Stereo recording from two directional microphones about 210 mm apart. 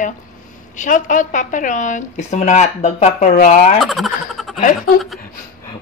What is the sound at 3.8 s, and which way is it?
Speech, centre (ahead or behind).